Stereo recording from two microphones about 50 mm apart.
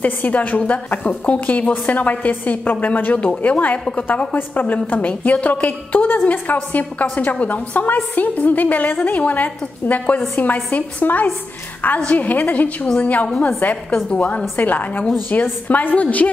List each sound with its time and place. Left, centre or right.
0.0 s a woman's voice: left